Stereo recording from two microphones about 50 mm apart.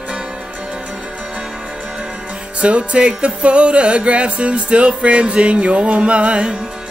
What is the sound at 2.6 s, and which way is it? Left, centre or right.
Music, right.